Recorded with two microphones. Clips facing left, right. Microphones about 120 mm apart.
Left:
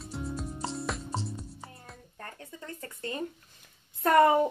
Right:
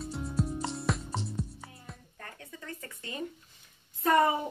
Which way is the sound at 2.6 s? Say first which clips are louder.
Left 5 dB; 40° left (ahead or behind).